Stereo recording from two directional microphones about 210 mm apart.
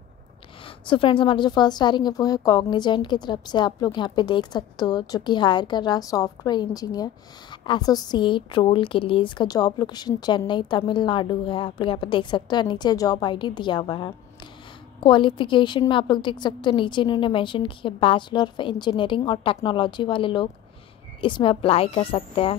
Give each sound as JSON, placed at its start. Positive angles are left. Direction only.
{"t": 0.8, "sound": "a woman's voice", "side_deg": 25}